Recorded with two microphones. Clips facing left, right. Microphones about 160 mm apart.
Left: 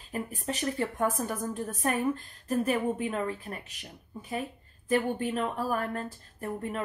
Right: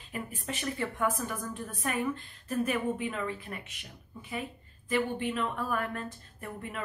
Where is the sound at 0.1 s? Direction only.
40° left (ahead or behind).